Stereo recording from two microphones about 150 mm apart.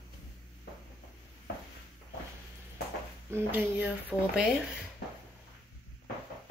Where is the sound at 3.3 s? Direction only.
10° right (ahead or behind).